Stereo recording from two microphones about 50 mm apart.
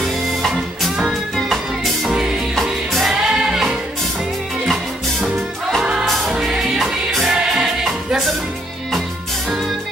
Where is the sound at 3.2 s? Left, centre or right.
Centre.